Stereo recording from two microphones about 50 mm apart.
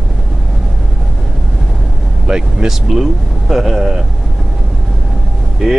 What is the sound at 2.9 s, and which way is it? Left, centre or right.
Speech, centre.